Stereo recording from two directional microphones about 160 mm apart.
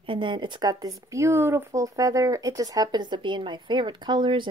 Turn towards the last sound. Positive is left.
turn(degrees=-30)  # may be behind; listen again after turning